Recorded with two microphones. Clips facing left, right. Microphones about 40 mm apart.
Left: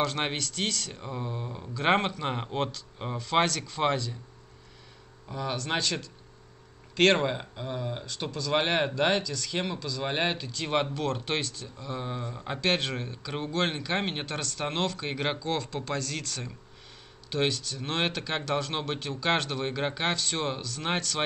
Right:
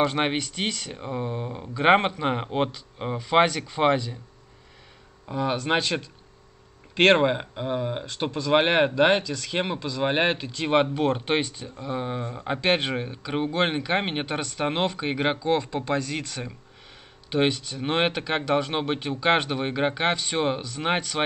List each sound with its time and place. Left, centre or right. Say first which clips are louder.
0.0 s speech: right 5 dB; centre
5.3 s speech: right 7 dB; right